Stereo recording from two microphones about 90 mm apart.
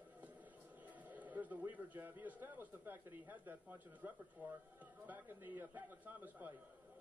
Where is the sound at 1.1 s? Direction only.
20° right (ahead or behind).